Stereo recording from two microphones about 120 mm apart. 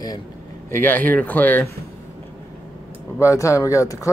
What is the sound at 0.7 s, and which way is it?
Speech, 15° left (ahead or behind).